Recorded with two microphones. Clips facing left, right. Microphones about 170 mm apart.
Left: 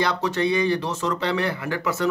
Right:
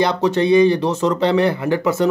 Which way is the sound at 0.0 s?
20° right (ahead or behind).